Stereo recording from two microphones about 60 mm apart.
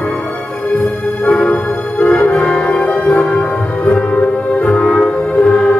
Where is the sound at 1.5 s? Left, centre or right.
Left.